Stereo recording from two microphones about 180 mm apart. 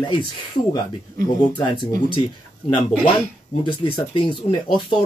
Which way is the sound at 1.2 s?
25° left (ahead or behind).